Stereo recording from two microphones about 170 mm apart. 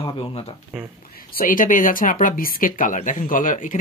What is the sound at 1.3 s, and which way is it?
Speech, 55° left (ahead or behind).